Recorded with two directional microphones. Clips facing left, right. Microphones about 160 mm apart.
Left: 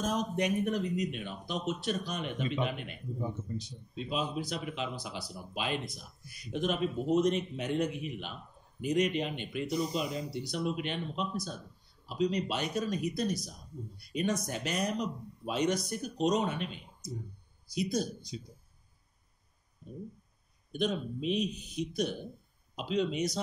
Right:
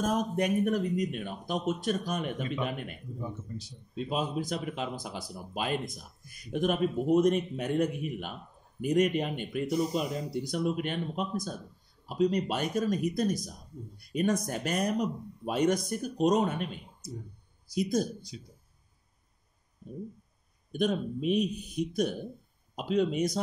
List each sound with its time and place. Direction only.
0.0 s speech: 50° right (ahead or behind)
3.2 s speech: 20° left (ahead or behind)
3.9 s speech: 45° right (ahead or behind)
18.3 s speech: 30° left (ahead or behind)
20.7 s speech: 50° right (ahead or behind)